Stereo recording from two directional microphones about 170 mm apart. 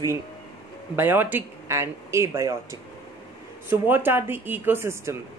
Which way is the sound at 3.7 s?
10° right (ahead or behind).